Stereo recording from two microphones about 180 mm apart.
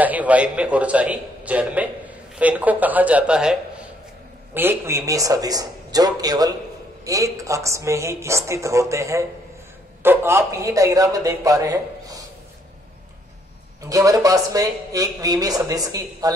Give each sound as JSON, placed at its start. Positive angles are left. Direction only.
{"t": 0.0, "sound": "a man's voice", "side_deg": -10}
{"t": 4.6, "sound": "a man's voice", "side_deg": -15}
{"t": 13.8, "sound": "a man's voice", "side_deg": -20}